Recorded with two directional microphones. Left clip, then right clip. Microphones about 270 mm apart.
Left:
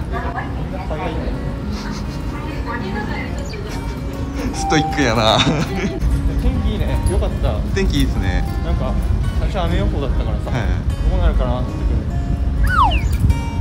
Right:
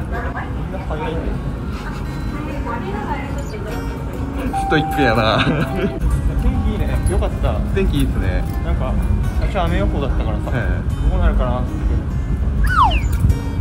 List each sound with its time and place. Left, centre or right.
4.6 s speech: centre
7.2 s speech: centre
9.6 s speech: centre
12.6 s a sound: centre